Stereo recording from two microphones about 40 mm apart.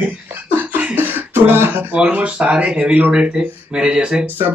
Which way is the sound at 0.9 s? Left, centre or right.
Right.